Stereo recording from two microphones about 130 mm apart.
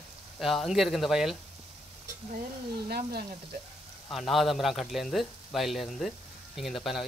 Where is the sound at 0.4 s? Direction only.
Centre (ahead or behind).